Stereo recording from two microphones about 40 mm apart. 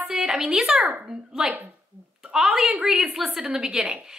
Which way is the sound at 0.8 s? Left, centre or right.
Right.